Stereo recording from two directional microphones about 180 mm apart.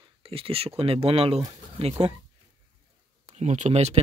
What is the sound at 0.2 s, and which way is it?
Speech, 30° right (ahead or behind).